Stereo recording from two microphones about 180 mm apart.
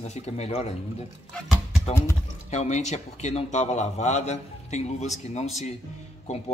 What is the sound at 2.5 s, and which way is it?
Speech, 40° left (ahead or behind).